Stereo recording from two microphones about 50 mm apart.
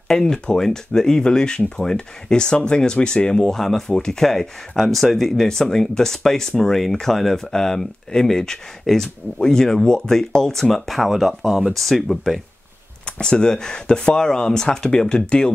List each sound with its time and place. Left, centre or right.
0.1 s speech: centre
13.0 s speech: centre